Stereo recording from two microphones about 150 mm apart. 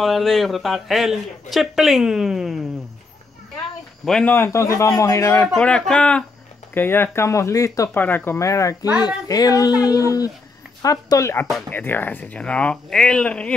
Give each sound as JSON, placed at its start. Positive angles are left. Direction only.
{"t": 0.0, "sound": "a man's voice", "side_deg": 0}
{"t": 4.0, "sound": "a man's voice", "side_deg": 5}
{"t": 5.6, "sound": "a man's voice", "side_deg": 5}